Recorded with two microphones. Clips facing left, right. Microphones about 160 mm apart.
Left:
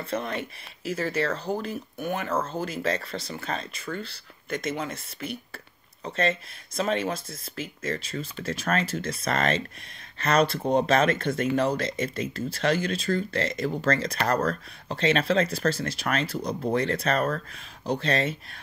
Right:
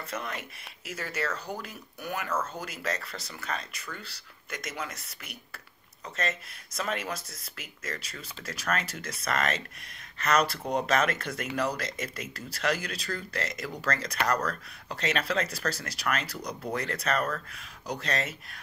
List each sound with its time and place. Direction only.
0.1 s speech: 30° left (ahead or behind)
3.8 s speech: 55° left (ahead or behind)
4.5 s speech: 25° left (ahead or behind)